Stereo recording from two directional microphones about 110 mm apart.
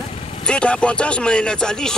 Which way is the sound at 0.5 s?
10° left (ahead or behind).